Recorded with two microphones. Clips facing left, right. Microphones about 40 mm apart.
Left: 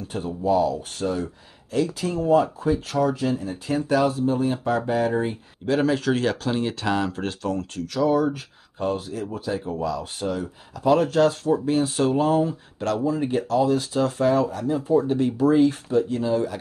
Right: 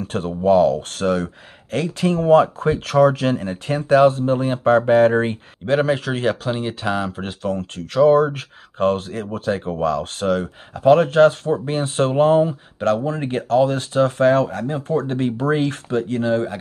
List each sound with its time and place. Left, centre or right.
0.1 s speech: right
0.9 s speech: right
3.7 s speech: right
5.8 s speech: right
7.4 s speech: right
10.8 s speech: right
13.0 s speech: right